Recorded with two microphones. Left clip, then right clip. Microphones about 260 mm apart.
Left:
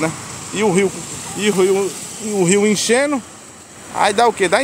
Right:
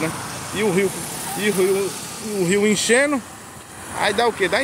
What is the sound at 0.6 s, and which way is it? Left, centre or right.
Speech, left.